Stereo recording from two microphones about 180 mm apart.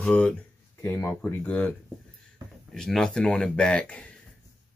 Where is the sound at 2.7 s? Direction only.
5° left (ahead or behind).